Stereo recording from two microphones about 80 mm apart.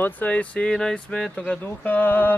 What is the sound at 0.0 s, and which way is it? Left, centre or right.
Speech, left.